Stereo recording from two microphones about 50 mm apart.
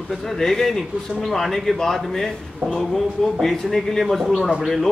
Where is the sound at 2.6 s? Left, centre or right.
Right.